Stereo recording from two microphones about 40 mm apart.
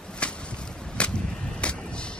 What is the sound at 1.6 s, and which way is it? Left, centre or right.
Vehicle, left.